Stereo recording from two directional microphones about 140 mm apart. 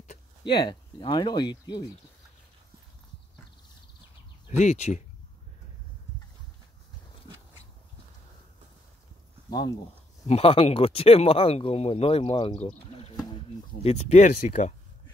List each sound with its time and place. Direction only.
0.4 s speech: 35° left (ahead or behind)
4.5 s speech: 55° left (ahead or behind)
10.2 s speech: 45° left (ahead or behind)